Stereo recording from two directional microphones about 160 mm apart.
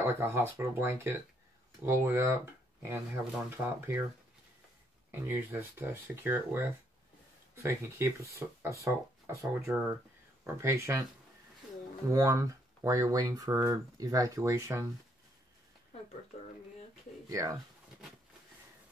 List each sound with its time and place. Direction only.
0.0 s speech: 15° right (ahead or behind)
3.4 s speech: 10° right (ahead or behind)
5.1 s speech: 15° right (ahead or behind)
12.1 s speech: 20° right (ahead or behind)
17.3 s speech: 20° right (ahead or behind)